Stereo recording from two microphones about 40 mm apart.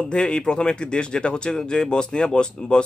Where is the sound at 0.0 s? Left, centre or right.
Left.